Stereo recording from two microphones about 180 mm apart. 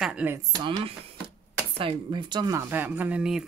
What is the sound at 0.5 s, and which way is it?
Speech, 25° right (ahead or behind).